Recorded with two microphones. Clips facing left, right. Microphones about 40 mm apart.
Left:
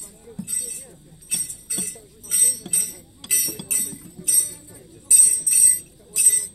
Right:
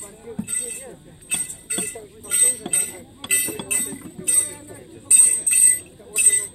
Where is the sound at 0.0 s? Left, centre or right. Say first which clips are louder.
Right 5 dB; right.